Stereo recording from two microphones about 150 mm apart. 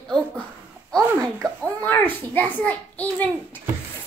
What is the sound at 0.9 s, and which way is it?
Speech, 20° right (ahead or behind).